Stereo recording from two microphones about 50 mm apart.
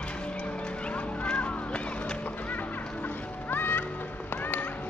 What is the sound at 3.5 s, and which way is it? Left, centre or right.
Music, left.